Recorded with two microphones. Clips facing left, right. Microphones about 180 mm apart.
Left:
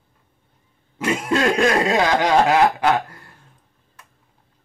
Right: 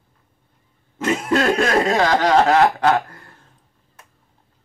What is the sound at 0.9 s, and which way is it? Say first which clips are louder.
Throat clearing: right 1 dB; 10° left (ahead or behind).